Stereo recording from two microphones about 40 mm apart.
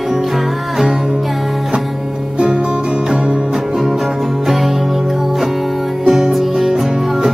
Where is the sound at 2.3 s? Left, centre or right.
Right.